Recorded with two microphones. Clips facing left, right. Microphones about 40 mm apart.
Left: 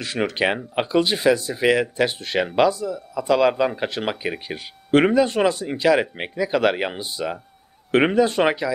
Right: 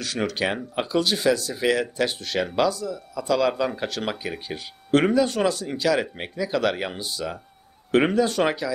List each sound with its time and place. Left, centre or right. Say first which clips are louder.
0.0 s speech: left 3 dB; left